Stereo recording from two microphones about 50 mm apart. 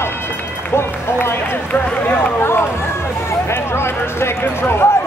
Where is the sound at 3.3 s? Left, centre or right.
Left.